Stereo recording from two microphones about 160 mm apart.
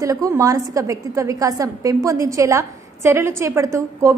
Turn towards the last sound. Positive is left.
turn(degrees=-20)  # may be behind; listen again after turning